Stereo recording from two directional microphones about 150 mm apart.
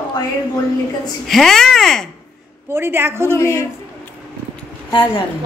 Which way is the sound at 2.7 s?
15° right (ahead or behind).